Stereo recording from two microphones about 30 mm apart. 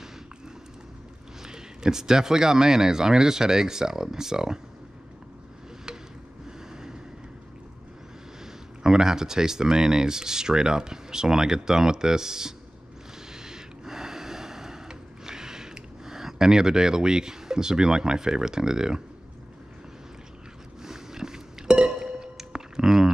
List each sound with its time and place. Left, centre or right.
1.4 s speech: right
8.8 s speech: centre
13.3 s snort: right
20.8 s music: centre
22.4 s a sound: centre